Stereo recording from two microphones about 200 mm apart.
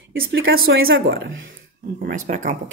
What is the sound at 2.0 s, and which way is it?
Speech, 40° right (ahead or behind).